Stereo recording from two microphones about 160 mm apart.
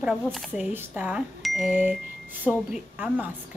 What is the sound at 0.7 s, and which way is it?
A woman's voice, 10° right (ahead or behind).